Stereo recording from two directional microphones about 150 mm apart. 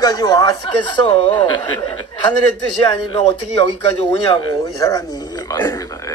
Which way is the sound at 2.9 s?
35° left (ahead or behind).